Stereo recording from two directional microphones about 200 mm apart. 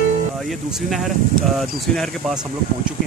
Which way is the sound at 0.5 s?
Centre (ahead or behind).